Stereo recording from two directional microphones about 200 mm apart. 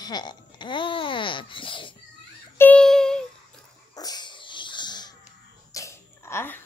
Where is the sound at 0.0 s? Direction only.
20° left (ahead or behind).